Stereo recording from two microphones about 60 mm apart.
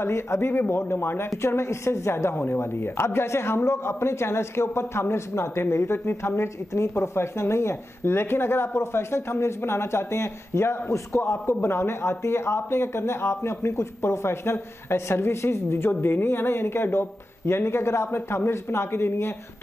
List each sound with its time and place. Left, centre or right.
0.0 s a woman's voice: left